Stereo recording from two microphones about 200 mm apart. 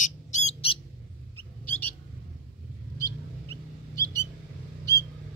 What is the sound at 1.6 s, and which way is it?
Bird, 10° left (ahead or behind).